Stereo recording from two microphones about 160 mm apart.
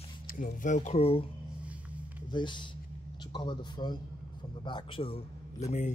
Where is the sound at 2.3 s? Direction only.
30° left (ahead or behind).